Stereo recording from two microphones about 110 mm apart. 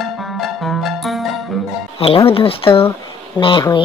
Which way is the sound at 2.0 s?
60° left (ahead or behind).